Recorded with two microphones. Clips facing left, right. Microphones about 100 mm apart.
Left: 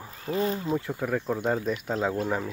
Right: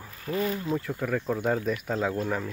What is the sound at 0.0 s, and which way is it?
Speech, 25° left (ahead or behind).